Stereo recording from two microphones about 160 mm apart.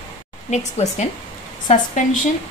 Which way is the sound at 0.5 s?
45° left (ahead or behind).